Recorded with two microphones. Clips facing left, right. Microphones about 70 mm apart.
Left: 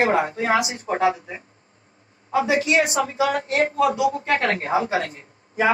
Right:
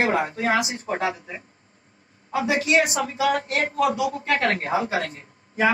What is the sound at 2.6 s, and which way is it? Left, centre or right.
A man's voice, left.